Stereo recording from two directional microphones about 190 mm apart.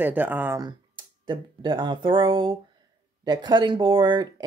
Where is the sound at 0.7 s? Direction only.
25° right (ahead or behind).